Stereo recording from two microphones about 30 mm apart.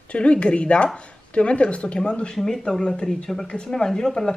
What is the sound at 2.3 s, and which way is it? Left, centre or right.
Speech, centre.